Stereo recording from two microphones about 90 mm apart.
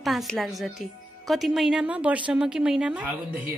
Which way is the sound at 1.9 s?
15° right (ahead or behind).